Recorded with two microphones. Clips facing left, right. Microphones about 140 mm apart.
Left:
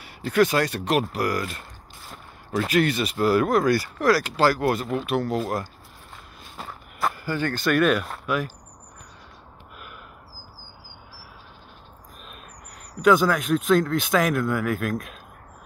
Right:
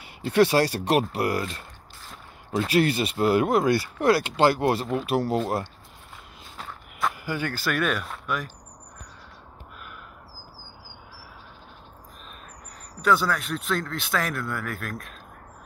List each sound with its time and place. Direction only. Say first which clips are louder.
0.0 s speech: even; 25° right (ahead or behind)
2.7 s speech: even; 30° right (ahead or behind)
6.5 s walk: left 2 dB; 5° left (ahead or behind)
7.2 s speech: left 4 dB; 10° right (ahead or behind)
13.0 s speech: left 5 dB; 15° left (ahead or behind)